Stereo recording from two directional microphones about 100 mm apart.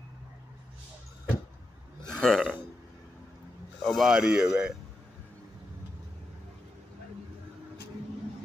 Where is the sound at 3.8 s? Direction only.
5° left (ahead or behind).